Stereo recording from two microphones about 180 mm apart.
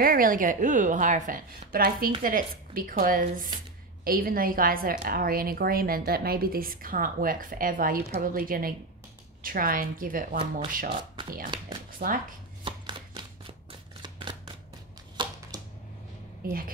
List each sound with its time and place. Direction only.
0.0 s a woman's voice: 50° right (ahead or behind)
10.3 s speech: 30° right (ahead or behind)
12.0 s speech: 55° right (ahead or behind)
12.6 s chopping: 25° right (ahead or behind)
13.7 s shuffling cards: 30° right (ahead or behind)
15.2 s a sound: 25° right (ahead or behind)